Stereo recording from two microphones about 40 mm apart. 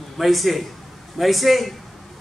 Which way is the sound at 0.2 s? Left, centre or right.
Centre.